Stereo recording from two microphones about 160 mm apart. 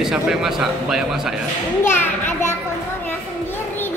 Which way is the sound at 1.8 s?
15° left (ahead or behind).